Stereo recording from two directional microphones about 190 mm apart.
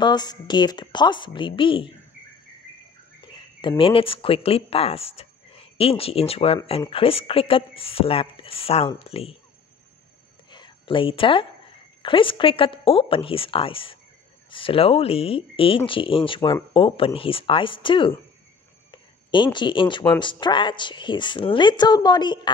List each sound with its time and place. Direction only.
0.0 s speech: 20° left (ahead or behind)
3.6 s speech: 30° left (ahead or behind)
10.5 s a sound: 25° left (ahead or behind)
12.0 s speech: 25° left (ahead or behind)